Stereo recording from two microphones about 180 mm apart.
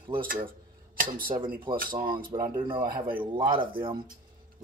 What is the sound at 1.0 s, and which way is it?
Speech, 50° right (ahead or behind).